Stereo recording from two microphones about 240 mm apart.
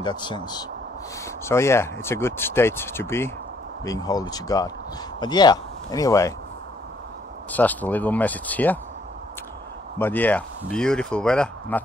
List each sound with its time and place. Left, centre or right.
0.0 s speech: centre
7.5 s speech: centre
9.9 s speech: centre